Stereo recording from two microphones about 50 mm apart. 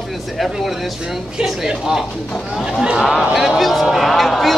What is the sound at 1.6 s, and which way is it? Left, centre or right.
Speech, centre.